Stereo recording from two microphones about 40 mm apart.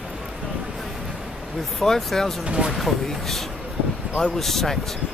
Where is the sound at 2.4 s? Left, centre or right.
Right.